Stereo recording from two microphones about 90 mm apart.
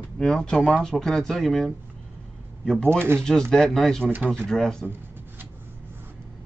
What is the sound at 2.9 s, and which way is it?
Speech, 25° right (ahead or behind).